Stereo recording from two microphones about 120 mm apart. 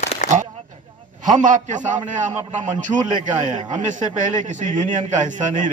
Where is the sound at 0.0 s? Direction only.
65° left (ahead or behind).